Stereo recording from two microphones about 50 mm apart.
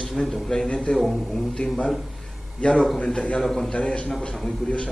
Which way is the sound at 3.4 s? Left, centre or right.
Centre.